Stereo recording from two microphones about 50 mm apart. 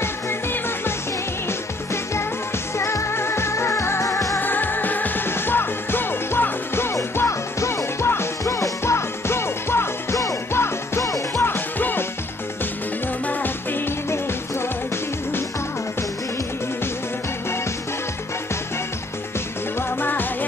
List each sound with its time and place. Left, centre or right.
0.0 s music: left
2.8 s music: left
4.4 s music: left
11.4 s music: left
20.0 s music: left